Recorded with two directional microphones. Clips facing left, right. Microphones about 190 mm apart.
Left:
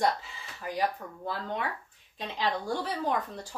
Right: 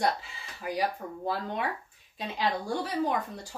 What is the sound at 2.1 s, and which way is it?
A woman's voice, 10° right (ahead or behind).